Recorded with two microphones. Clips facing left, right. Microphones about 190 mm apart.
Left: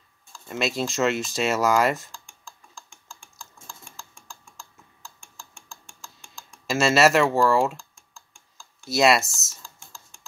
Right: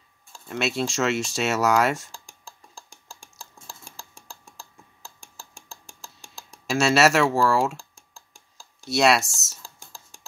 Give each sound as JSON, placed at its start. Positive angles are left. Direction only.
{"t": 0.5, "sound": "speech", "side_deg": 0}
{"t": 2.1, "sound": "typing", "side_deg": -40}
{"t": 6.7, "sound": "speech", "side_deg": 0}
{"t": 7.7, "sound": "typing", "side_deg": -35}
{"t": 8.8, "sound": "speech", "side_deg": 0}
{"t": 9.6, "sound": "computer keyboard", "side_deg": -40}